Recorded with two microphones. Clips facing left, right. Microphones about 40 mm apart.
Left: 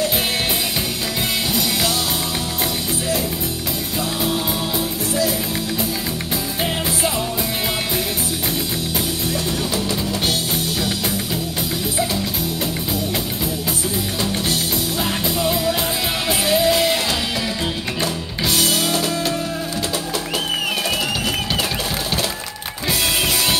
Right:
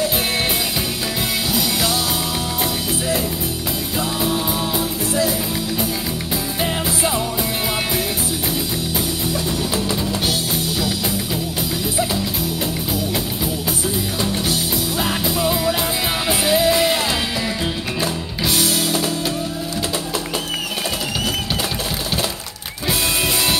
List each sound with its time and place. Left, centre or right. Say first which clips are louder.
1.5 s music: right 2 dB; centre
15.0 s music: right 2 dB; centre
16.3 s music: even; centre